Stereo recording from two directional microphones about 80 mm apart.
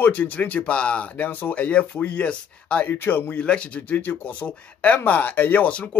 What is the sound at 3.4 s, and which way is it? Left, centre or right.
Speech, centre.